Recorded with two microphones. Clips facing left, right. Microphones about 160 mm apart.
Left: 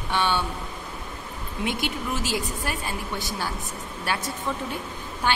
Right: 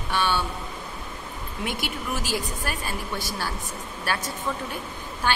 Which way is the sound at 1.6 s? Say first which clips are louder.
Left 2 dB; 25° left (ahead or behind).